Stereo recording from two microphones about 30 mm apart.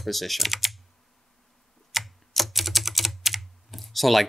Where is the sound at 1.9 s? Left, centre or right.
Centre.